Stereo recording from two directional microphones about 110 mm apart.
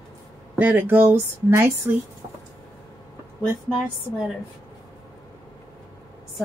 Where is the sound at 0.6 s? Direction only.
15° right (ahead or behind).